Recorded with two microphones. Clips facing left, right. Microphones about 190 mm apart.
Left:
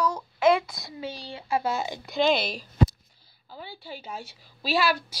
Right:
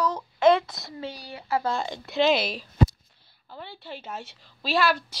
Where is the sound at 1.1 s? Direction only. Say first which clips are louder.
Even; 25° left (ahead or behind).